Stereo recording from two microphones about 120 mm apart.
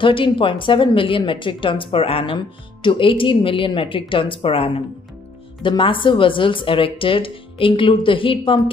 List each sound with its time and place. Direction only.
0.0 s a woman's voice: 45° left (ahead or behind)